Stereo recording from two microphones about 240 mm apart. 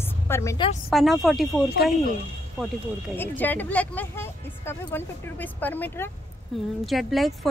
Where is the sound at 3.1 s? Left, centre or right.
Centre.